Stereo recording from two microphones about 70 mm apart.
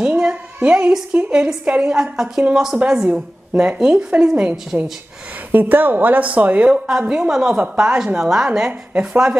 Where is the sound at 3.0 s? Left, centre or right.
Right.